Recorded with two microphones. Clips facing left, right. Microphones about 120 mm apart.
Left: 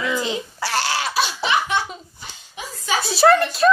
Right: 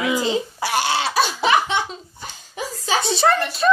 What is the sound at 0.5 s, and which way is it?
Speech, 20° right (ahead or behind).